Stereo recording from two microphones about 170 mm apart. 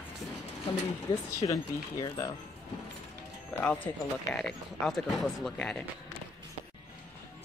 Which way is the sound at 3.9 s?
20° left (ahead or behind).